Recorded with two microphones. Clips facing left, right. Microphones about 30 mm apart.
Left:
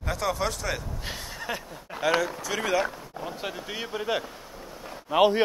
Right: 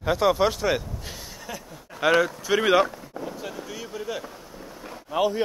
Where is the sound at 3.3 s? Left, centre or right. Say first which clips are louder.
Left 1 dB; left.